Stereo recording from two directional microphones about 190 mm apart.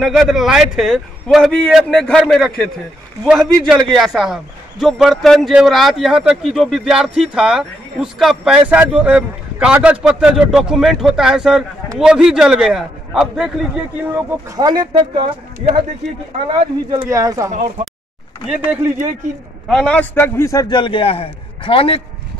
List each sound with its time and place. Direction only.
0.0 s a man's voice: centre (ahead or behind)
14.1 s speech: 20° right (ahead or behind)
17.0 s speech: 20° right (ahead or behind)
18.5 s speech: 10° right (ahead or behind)
19.7 s a man's voice: 5° left (ahead or behind); by 22.0 s 30° left (ahead or behind)